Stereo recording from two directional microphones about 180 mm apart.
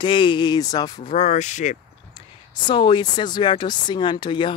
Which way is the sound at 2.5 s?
25° left (ahead or behind).